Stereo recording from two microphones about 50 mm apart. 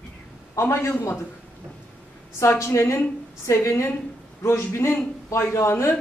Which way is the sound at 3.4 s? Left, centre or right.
Left.